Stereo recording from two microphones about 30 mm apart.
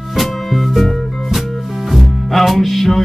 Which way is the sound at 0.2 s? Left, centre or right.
Centre.